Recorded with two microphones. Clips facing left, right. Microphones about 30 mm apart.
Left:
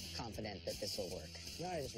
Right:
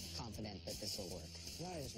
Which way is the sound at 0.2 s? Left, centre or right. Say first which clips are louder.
Left 5 dB; left.